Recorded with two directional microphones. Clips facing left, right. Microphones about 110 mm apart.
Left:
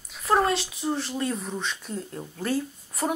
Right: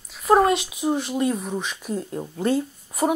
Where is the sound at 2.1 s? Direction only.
20° right (ahead or behind).